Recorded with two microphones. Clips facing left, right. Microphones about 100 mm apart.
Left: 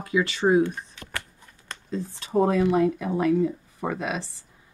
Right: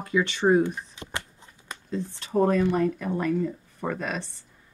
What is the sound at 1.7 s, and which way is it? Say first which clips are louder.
Speech: even; centre (ahead or behind).